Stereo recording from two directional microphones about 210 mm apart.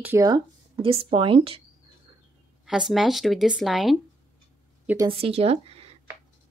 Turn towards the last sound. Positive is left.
turn(degrees=-30)  # may be behind; listen again after turning